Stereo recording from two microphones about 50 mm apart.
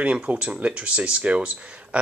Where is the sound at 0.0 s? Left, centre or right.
Right.